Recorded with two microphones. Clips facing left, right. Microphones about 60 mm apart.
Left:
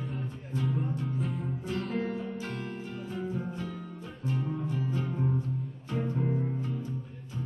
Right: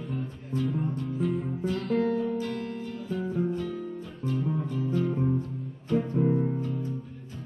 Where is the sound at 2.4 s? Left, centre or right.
Left.